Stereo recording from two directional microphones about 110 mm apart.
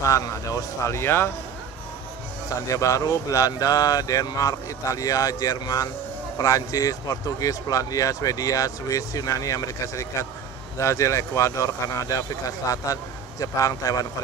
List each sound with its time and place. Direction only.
0.0 s speech: 30° left (ahead or behind)
2.7 s speech: 30° left (ahead or behind)